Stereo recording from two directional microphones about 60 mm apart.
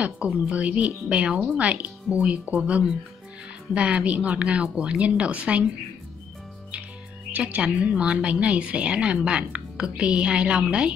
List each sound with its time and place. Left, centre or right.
0.0 s speech: right
7.3 s speech: right